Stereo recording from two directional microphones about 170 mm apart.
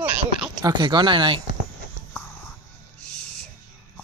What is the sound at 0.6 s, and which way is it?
Speech, 25° right (ahead or behind).